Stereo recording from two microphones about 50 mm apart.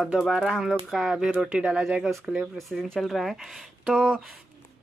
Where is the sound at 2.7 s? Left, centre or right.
Centre.